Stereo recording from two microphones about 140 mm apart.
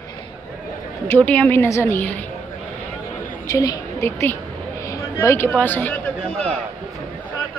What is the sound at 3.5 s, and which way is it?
A woman's voice, 25° left (ahead or behind).